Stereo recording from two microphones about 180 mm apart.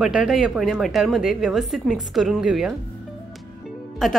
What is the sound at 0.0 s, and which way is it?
A woman's voice, 5° right (ahead or behind).